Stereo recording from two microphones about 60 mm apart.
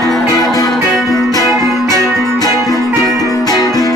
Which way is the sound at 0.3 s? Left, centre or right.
Left.